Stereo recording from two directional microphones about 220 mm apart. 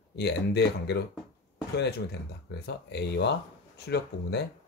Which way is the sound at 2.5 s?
50° left (ahead or behind).